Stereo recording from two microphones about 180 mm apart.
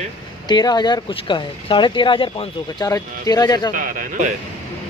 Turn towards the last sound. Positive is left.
turn(degrees=-45)  # may be behind; listen again after turning